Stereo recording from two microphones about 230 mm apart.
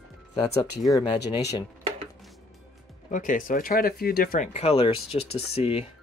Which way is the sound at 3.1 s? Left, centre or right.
Left.